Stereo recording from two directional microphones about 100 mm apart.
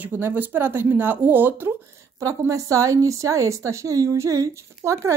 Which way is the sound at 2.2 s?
35° right (ahead or behind).